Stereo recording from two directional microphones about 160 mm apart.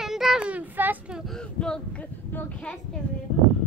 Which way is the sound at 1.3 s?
5° left (ahead or behind).